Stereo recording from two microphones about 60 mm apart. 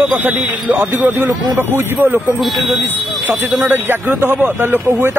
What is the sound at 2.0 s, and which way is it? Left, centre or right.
Speech, right.